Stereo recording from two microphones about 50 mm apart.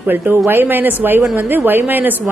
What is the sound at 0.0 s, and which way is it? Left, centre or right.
A woman's voice, right.